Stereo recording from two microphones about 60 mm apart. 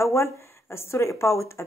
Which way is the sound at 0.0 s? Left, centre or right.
Left.